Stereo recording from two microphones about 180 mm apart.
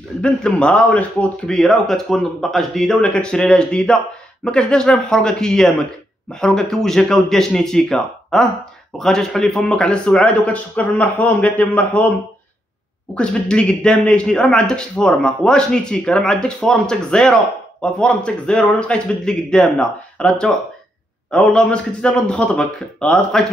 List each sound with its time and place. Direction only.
0.2 s a man's voice: 5° left (ahead or behind)
13.1 s a man's voice: 5° left (ahead or behind)